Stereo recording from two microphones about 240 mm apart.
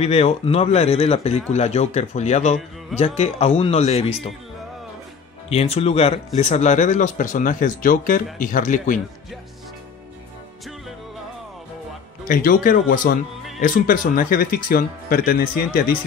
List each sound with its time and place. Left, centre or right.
0.0 s speech: left
5.5 s speech: left
12.3 s speech: left